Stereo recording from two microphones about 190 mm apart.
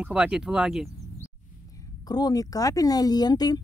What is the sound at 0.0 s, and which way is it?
Speech, 5° right (ahead or behind).